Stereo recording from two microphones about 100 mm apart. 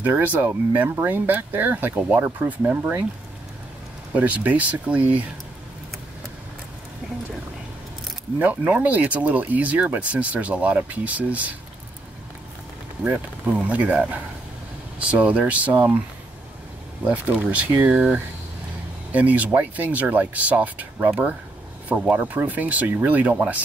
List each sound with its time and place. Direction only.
0.0 s speech: 15° right (ahead or behind)
4.1 s speech: 15° right (ahead or behind)
8.4 s speech: 15° right (ahead or behind)
13.0 s speech: 10° right (ahead or behind)
17.0 s speech: 15° right (ahead or behind)